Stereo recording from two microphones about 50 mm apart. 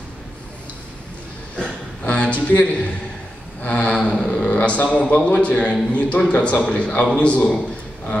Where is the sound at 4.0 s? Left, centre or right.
Centre.